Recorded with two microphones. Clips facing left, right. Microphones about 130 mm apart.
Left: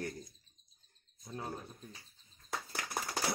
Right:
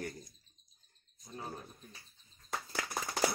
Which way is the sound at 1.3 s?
25° left (ahead or behind).